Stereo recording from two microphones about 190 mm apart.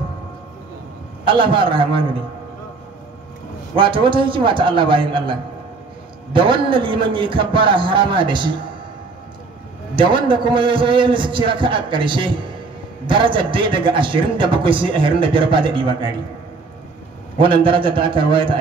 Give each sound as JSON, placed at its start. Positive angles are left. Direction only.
{"t": 1.2, "sound": "a man's voice", "side_deg": -25}
{"t": 3.7, "sound": "a man's voice", "side_deg": -25}
{"t": 9.9, "sound": "a man's voice", "side_deg": -25}
{"t": 17.4, "sound": "a man's voice", "side_deg": -25}